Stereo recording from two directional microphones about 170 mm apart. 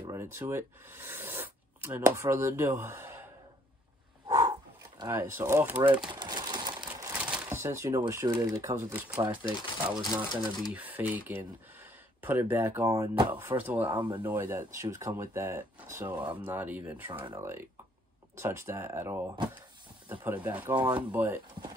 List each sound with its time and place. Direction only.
0.1 s speech: 15° right (ahead or behind)
4.3 s dog: 20° right (ahead or behind)
5.1 s speech: 15° right (ahead or behind)
6.1 s a sound: 25° right (ahead or behind)
7.2 s shuffling cards: 10° right (ahead or behind)
8.1 s speech: 15° right (ahead or behind)
13.8 s speech: 25° right (ahead or behind)